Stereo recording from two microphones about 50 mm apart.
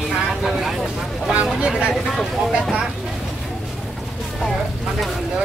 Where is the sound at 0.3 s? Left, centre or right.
Centre.